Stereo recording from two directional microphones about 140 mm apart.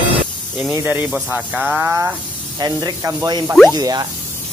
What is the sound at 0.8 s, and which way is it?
Speech, 15° right (ahead or behind).